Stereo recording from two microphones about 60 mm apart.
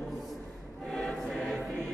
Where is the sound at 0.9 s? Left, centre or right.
Centre.